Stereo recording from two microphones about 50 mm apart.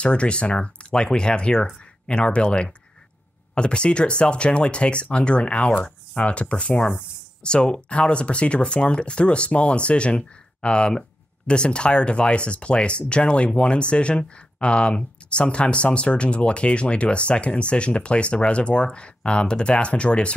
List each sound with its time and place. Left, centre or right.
0.0 s speech: left